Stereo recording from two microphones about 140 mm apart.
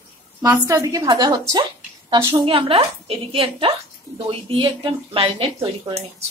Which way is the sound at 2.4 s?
40° right (ahead or behind).